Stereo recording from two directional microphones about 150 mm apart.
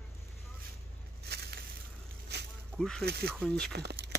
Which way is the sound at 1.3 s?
90° right.